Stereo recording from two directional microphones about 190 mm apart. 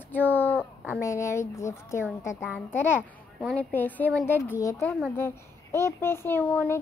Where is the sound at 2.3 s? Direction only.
Centre (ahead or behind).